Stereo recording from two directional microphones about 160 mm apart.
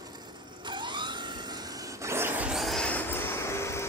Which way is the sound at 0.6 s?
30° right (ahead or behind).